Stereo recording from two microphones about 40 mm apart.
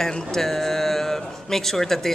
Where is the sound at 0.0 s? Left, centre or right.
Centre.